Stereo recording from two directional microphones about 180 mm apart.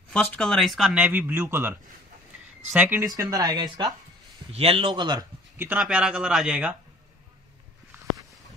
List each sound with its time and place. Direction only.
0.1 s a man's voice: 5° left (ahead or behind); by 5.2 s 25° right (ahead or behind)
5.6 s speech: 5° right (ahead or behind)